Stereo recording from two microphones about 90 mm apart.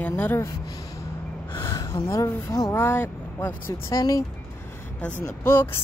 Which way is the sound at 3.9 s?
40° left (ahead or behind).